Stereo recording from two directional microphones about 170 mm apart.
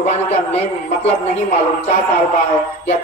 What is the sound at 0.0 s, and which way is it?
Music, 40° left (ahead or behind).